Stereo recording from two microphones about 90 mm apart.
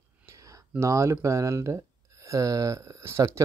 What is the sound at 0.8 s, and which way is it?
Speech, 35° right (ahead or behind).